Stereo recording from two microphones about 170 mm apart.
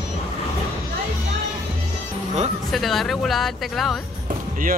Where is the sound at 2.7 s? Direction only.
Centre (ahead or behind).